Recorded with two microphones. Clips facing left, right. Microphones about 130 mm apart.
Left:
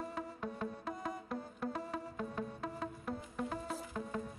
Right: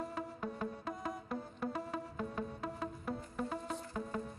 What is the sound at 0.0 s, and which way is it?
Music, centre (ahead or behind).